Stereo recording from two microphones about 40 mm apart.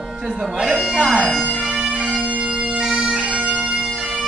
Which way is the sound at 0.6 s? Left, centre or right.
Centre.